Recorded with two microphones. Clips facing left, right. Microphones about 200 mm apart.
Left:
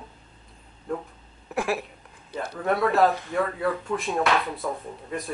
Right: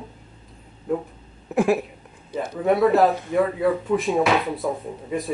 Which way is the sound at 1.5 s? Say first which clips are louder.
Right 7 dB; 15° right (ahead or behind).